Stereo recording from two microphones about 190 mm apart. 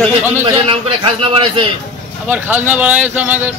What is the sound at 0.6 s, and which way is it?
A man's voice, 25° right (ahead or behind).